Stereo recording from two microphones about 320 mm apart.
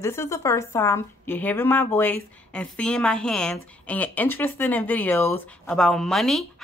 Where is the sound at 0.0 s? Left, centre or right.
Centre.